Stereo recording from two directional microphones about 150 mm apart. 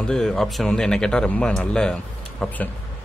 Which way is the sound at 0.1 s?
5° left (ahead or behind).